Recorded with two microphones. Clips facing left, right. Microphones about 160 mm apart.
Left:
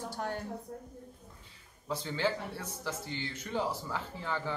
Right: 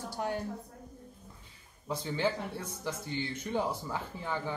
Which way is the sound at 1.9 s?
15° right (ahead or behind).